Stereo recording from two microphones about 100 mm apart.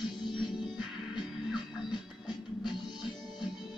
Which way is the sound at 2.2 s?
50° left (ahead or behind).